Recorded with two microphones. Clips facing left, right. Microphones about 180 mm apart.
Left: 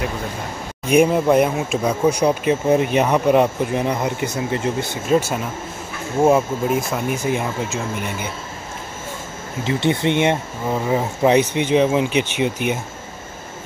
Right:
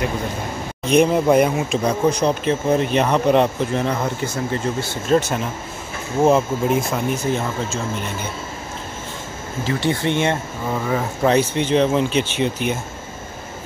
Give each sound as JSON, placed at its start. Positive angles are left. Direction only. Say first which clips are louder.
{"t": 0.8, "sound": "speech", "louder": "even", "side_deg": 5}
{"t": 5.0, "sound": "speech", "louder": "right 1 dB", "side_deg": 5}
{"t": 9.7, "sound": "speech", "louder": "left 2 dB", "side_deg": 20}